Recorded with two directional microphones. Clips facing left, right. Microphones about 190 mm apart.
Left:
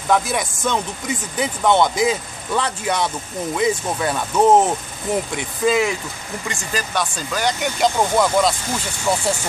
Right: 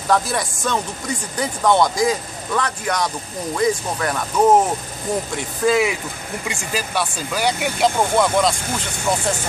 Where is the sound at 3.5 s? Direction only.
10° left (ahead or behind).